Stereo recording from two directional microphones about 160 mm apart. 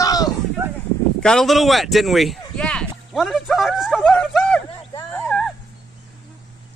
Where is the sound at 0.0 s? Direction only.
25° left (ahead or behind).